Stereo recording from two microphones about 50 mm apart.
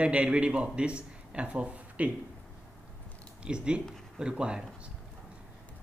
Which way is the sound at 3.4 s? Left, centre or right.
Centre.